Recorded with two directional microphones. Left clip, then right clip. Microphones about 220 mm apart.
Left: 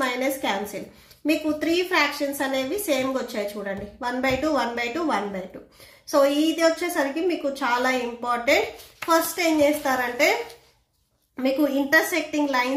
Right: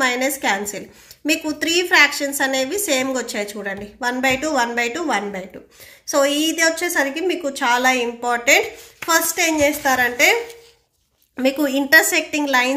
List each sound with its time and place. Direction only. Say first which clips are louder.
0.0 s a woman's voice: right 5 dB; 30° right (ahead or behind)
11.3 s a woman's voice: right 4 dB; 35° right (ahead or behind)